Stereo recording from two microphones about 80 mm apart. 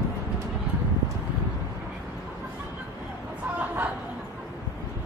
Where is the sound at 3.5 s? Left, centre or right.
Centre.